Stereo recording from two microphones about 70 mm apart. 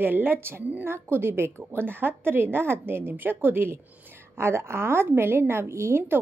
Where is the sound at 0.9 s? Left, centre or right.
Right.